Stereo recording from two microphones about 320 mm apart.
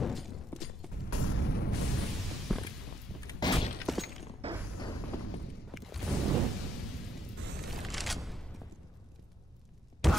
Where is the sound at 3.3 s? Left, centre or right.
Centre.